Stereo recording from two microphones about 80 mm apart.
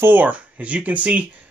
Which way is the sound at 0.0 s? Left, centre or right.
Right.